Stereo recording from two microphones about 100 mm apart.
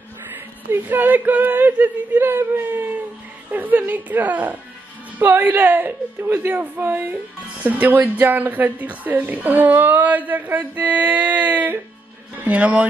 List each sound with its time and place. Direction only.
0.3 s a woman's voice: 20° right (ahead or behind)